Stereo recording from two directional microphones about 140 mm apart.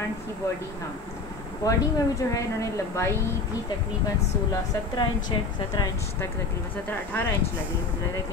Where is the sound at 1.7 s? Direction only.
25° left (ahead or behind).